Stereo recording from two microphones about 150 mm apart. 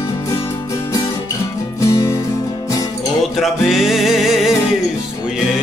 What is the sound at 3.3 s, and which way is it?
Music, centre (ahead or behind).